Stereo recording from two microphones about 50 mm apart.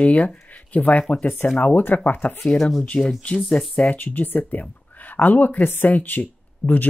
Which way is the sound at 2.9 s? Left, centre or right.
Left.